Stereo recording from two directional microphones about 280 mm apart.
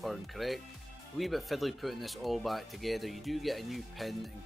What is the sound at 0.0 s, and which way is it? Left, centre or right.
Speech, centre.